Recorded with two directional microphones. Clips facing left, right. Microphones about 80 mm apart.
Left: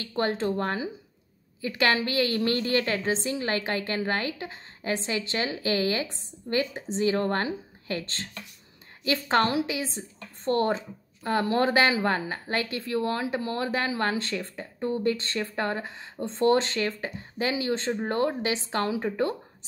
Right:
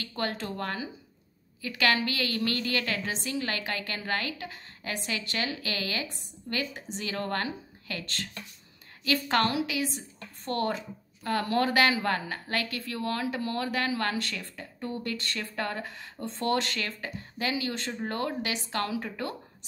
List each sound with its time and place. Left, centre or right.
0.0 s a woman's voice: left